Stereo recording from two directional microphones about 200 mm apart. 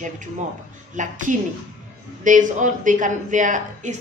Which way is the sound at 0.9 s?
40° right (ahead or behind).